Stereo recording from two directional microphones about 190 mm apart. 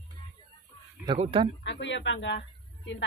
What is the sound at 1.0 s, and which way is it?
Speech, 30° right (ahead or behind).